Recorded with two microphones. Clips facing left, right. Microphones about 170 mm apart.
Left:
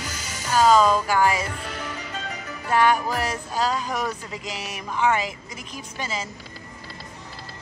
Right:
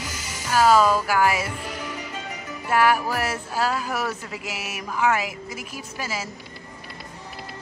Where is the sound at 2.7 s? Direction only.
5° right (ahead or behind).